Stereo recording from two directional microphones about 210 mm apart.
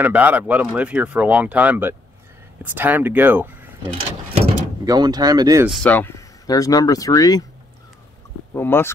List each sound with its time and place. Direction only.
0.0 s speech: 5° right (ahead or behind)
4.8 s speech: 20° right (ahead or behind)
5.7 s speech: 5° left (ahead or behind)
8.5 s speech: 10° left (ahead or behind)